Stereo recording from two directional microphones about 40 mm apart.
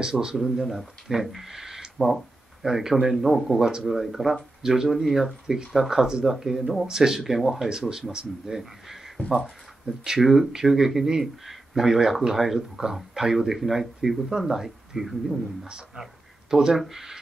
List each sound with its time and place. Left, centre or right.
0.0 s speech: centre
0.6 s speech: centre
8.5 s a sound: centre
10.0 s speech: centre
16.0 s a sound: centre
16.7 s speech: centre